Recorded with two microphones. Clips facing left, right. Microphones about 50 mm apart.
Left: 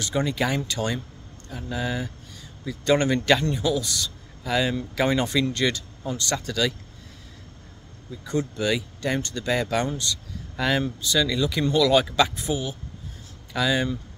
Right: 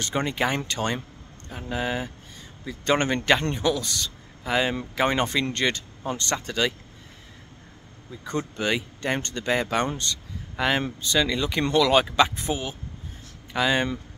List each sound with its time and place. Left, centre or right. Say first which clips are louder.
0.0 s speech: even; right
8.3 s speech: left 1 dB; right
10.5 s a sound: even; right
10.8 s speech: even; right